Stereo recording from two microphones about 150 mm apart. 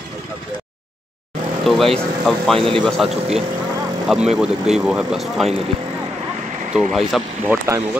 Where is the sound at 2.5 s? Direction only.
35° right (ahead or behind).